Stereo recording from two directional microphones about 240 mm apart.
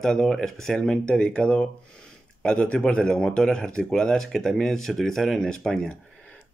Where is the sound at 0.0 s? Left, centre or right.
Centre.